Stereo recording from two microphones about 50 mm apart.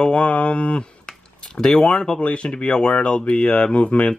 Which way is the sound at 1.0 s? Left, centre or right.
Centre.